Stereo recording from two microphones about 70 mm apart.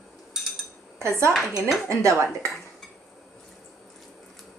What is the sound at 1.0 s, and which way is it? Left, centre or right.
Speech, right.